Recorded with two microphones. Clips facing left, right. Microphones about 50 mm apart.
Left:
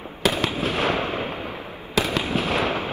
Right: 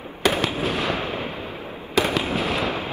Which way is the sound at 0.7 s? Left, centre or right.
Left.